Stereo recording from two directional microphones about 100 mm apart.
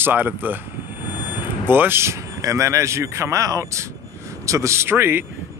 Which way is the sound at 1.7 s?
20° right (ahead or behind).